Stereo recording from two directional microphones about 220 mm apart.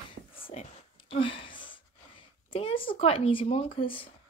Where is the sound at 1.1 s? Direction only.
25° left (ahead or behind).